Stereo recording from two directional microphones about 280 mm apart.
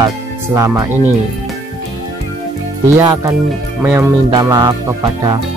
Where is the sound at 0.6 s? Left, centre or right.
Centre.